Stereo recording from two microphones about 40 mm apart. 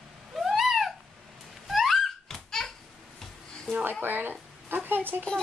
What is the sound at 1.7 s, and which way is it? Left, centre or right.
Thunk, centre.